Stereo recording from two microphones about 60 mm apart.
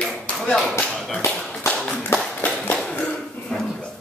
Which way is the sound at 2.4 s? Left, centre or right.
Left.